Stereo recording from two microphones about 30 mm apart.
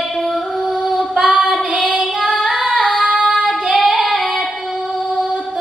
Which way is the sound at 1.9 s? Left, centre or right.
Centre.